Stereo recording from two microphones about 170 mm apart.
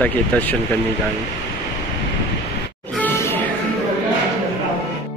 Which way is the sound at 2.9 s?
15° left (ahead or behind).